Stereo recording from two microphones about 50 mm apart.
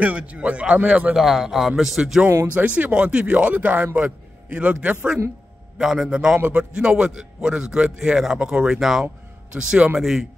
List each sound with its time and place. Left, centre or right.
0.0 s a man's voice: right
1.1 s a man's voice: centre
2.5 s a man's voice: right
5.8 s a man's voice: centre
8.7 s a man's voice: centre
9.5 s a man's voice: centre
9.9 s a man's voice: centre